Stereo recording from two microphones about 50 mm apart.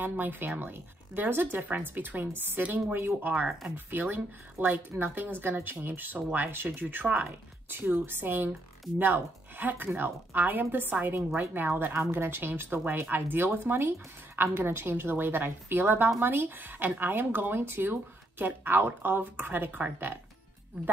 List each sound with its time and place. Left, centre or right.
0.0 s a woman's voice: right
7.2 s a woman's voice: right